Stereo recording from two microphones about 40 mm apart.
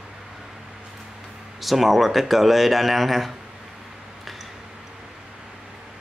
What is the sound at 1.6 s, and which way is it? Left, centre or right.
Speech, centre.